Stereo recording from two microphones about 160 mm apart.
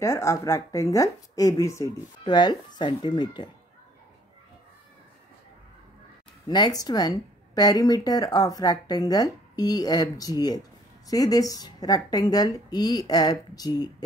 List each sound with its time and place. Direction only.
0.0 s speech: 15° left (ahead or behind)
6.4 s speech: 25° left (ahead or behind)